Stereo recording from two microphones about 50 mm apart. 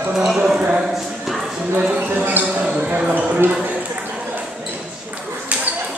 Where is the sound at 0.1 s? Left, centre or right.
Centre.